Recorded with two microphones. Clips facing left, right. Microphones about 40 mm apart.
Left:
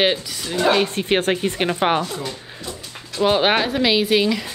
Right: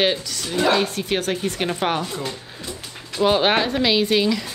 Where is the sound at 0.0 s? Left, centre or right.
Centre.